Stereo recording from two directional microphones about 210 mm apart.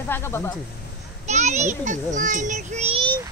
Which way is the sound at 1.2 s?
35° right (ahead or behind).